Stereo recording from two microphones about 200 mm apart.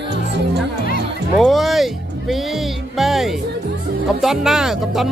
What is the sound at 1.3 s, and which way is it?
Music, centre (ahead or behind).